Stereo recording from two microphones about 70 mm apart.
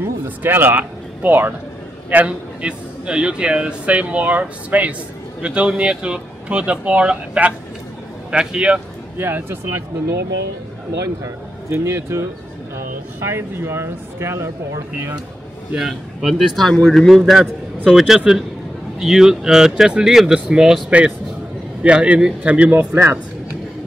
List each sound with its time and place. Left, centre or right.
0.0 s a man's voice: right; by 8.8 s centre
9.2 s speech: right
11.7 s speech: right
15.7 s speech: centre